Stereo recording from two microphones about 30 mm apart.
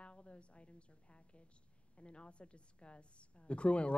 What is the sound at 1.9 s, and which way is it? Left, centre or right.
Speech, left.